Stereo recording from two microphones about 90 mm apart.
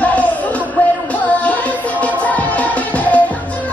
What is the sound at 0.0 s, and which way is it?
Music, 15° left (ahead or behind).